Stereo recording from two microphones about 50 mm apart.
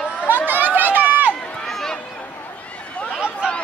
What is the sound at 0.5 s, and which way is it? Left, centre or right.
Run, right.